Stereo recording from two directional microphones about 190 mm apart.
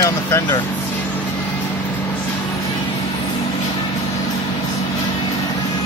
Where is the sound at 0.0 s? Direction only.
20° left (ahead or behind).